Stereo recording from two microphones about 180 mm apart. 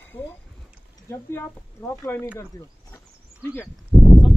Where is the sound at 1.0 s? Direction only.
15° left (ahead or behind).